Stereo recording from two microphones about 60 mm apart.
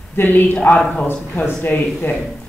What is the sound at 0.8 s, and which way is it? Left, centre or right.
Speech, centre.